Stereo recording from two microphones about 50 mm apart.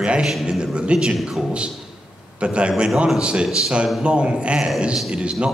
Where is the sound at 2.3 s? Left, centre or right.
Right.